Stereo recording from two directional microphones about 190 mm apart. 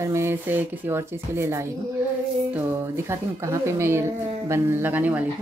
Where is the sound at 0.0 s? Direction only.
15° right (ahead or behind).